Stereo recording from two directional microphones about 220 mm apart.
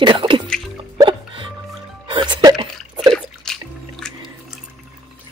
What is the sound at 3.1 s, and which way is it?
Drip, centre (ahead or behind).